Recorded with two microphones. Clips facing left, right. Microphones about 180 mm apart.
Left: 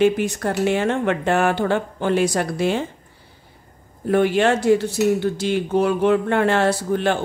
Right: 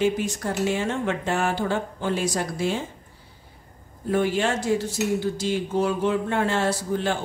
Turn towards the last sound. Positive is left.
turn(degrees=65)  # may be behind; listen again after turning